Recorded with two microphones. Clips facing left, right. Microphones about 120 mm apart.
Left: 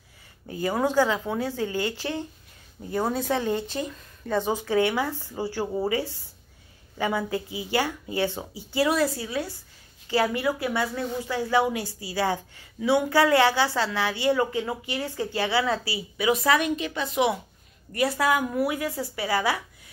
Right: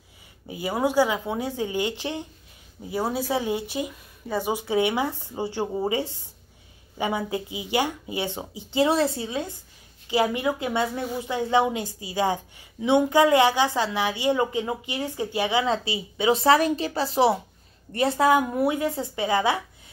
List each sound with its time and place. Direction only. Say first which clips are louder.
0.5 s speech: even; 15° right (ahead or behind)
2.8 s a woman's voice: even; 5° right (ahead or behind)